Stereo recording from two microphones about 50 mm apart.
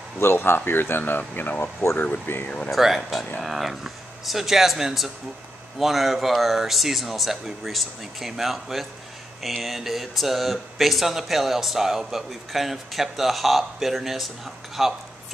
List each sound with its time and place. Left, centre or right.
0.2 s speech: left
2.7 s speech: centre